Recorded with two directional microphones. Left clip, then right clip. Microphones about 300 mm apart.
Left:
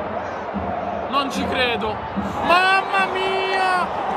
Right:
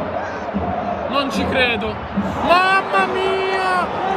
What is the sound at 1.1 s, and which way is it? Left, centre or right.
A man's voice, centre.